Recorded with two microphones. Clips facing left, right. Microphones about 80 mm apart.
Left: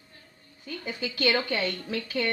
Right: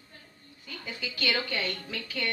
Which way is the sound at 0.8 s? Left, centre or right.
Left.